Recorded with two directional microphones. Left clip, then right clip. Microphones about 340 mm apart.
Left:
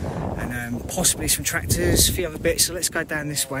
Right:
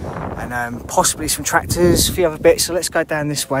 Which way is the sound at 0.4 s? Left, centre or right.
Centre.